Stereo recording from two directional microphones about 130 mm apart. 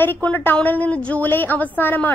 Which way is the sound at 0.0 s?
15° left (ahead or behind).